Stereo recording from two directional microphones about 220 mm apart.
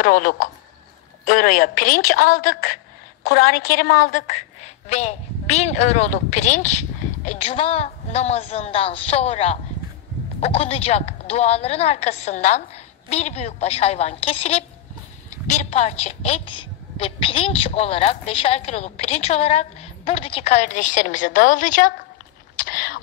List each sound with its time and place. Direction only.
0.0 s a woman's voice: 40° left (ahead or behind)